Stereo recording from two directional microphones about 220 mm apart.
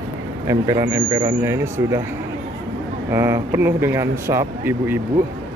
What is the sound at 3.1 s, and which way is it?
Speech, 10° right (ahead or behind).